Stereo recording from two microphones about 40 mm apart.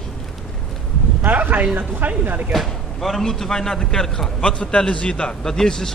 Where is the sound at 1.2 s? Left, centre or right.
Right.